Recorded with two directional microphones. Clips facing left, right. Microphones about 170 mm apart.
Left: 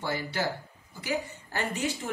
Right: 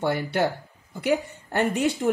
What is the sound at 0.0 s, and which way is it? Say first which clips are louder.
Speech: right 7 dB; 60° right (ahead or behind).